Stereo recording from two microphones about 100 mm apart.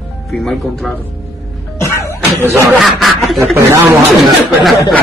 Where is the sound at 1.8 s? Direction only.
25° left (ahead or behind).